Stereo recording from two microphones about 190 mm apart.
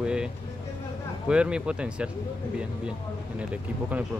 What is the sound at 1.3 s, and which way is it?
Speech, 5° right (ahead or behind).